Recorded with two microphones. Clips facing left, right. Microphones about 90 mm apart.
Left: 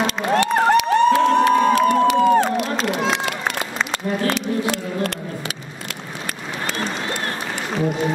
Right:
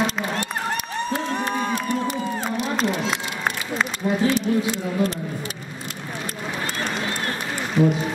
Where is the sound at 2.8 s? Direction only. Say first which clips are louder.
Left 2 dB; 80° left.